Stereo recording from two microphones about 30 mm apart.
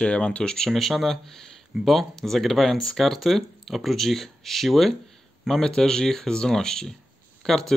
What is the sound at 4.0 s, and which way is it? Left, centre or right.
Speech, centre.